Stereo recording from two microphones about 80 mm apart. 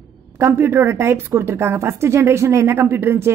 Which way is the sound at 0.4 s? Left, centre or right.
Right.